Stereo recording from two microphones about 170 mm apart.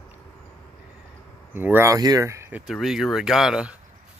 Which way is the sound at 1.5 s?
10° right (ahead or behind).